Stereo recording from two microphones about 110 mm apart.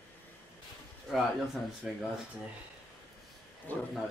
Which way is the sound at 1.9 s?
5° right (ahead or behind).